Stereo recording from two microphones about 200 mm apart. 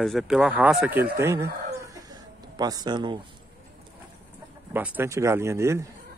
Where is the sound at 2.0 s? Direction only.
20° right (ahead or behind).